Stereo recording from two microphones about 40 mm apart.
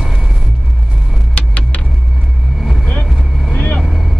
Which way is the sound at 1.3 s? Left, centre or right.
Left.